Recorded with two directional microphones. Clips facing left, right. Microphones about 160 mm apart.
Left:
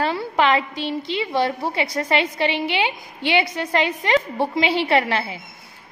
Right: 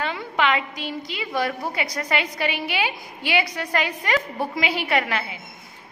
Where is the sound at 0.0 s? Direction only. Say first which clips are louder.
Left 4 dB; 35° left (ahead or behind).